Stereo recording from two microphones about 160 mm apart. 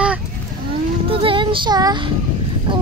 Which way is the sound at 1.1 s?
35° right (ahead or behind).